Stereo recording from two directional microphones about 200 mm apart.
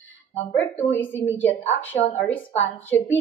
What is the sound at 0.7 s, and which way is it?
A woman's voice, 10° left (ahead or behind).